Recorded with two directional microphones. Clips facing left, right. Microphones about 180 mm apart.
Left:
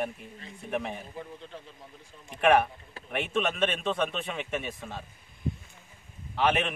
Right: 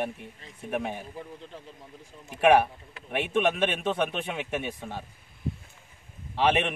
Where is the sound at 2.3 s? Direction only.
10° right (ahead or behind).